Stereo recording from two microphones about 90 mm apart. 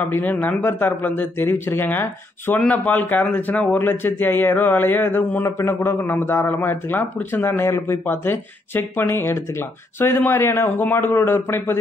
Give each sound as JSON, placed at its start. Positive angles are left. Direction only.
{"t": 0.1, "sound": "a man's voice", "side_deg": 20}